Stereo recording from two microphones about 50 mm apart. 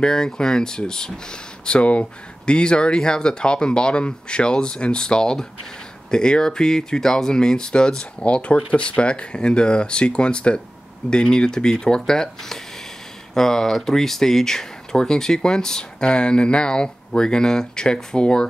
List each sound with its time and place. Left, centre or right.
0.0 s speech: centre